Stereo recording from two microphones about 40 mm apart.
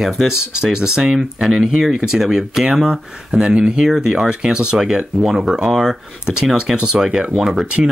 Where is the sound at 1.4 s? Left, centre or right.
Centre.